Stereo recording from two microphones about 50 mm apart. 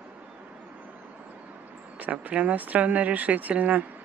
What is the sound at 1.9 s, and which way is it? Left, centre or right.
Speech, right.